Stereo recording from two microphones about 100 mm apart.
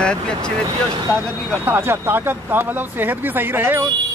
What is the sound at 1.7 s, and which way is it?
Speech, 25° right (ahead or behind).